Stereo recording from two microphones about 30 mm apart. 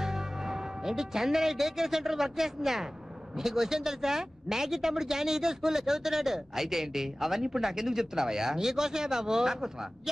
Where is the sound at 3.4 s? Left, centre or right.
Centre.